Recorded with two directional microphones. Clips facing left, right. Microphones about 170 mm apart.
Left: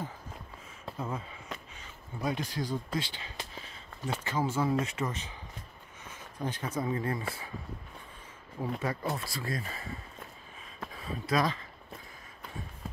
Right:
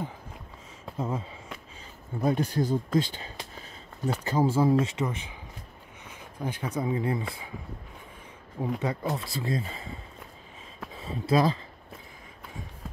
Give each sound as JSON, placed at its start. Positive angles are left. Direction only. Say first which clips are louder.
{"t": 0.9, "sound": "speech", "louder": "right 5 dB", "side_deg": -25}
{"t": 2.2, "sound": "speech", "louder": "right 7 dB", "side_deg": -50}
{"t": 5.0, "sound": "speech", "louder": "right 3 dB", "side_deg": -15}
{"t": 8.5, "sound": "speech", "louder": "right 4 dB", "side_deg": -15}
{"t": 11.0, "sound": "speech", "louder": "right 5 dB", "side_deg": -25}